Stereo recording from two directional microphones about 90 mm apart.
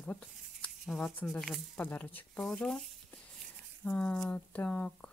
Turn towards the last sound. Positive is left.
turn(degrees=15)  # may be behind; listen again after turning